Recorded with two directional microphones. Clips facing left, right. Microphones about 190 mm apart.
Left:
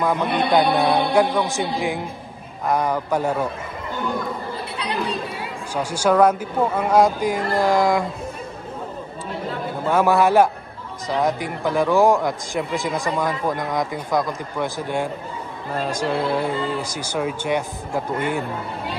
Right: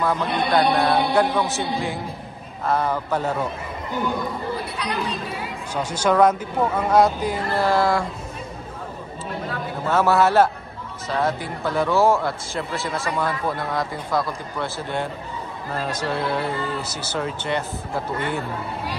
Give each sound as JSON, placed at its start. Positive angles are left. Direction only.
{"t": 0.0, "sound": "speech", "side_deg": 15}
{"t": 5.8, "sound": "speech", "side_deg": 10}
{"t": 9.8, "sound": "speech", "side_deg": 15}